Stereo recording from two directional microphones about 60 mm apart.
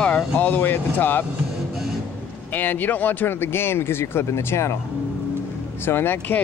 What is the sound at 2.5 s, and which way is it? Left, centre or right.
Speech, left.